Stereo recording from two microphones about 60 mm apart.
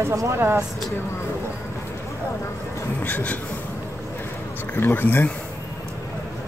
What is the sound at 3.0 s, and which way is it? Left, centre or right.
Speech, left.